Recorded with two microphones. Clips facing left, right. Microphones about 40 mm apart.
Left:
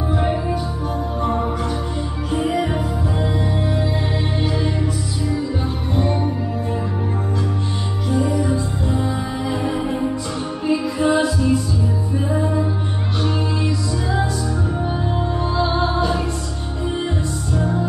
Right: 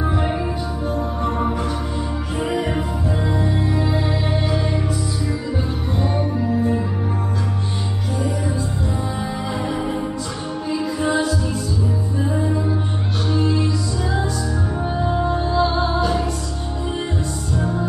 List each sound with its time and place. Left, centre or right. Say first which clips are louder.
2.5 s music: left 1 dB; centre
9.6 s music: even; centre
10.7 s music: left 3 dB; left
13.3 s music: right 7 dB; centre
15.0 s music: right 2 dB; centre
15.4 s music: left 2 dB; left